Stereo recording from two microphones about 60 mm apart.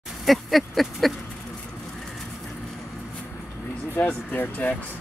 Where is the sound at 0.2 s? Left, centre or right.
Centre.